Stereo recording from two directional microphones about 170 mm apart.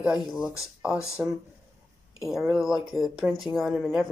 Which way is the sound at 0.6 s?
5° right (ahead or behind).